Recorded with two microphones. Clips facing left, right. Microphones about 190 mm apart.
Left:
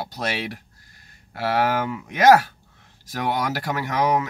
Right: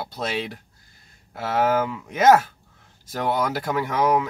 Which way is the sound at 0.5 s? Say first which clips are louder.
Left 3 dB; 90° left.